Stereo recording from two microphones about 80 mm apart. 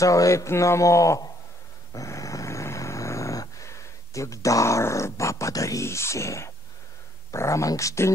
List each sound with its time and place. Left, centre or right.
0.0 s a man's voice: left
1.9 s dog: left
7.2 s a man's voice: left